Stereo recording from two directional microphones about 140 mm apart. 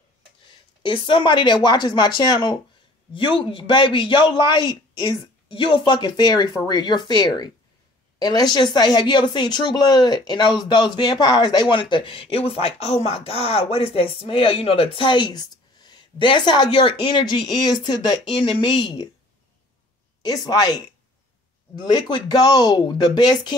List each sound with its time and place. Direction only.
0.5 s speech: 35° left (ahead or behind)
20.2 s speech: 25° left (ahead or behind)